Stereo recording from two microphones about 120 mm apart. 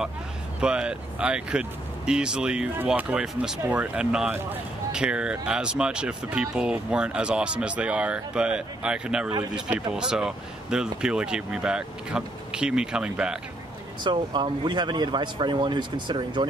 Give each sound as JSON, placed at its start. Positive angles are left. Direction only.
{"t": 0.6, "sound": "speech", "side_deg": -5}
{"t": 14.0, "sound": "speech", "side_deg": -40}